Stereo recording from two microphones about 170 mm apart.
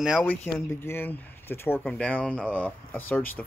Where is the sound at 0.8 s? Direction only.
15° left (ahead or behind).